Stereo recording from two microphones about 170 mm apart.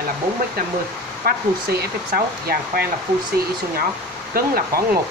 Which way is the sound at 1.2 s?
60° right (ahead or behind).